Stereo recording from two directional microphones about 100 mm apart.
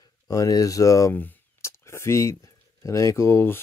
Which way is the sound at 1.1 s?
20° left (ahead or behind).